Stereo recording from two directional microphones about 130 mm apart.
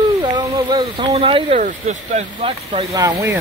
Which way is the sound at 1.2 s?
40° right (ahead or behind).